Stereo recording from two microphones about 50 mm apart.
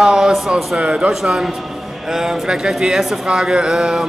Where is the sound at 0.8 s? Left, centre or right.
Right.